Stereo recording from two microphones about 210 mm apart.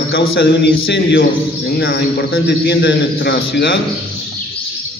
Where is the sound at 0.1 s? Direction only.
50° left (ahead or behind).